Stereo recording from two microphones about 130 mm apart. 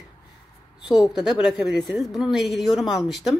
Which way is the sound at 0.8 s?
5° right (ahead or behind).